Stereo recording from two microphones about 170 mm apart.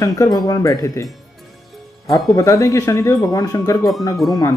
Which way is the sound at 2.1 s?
20° left (ahead or behind).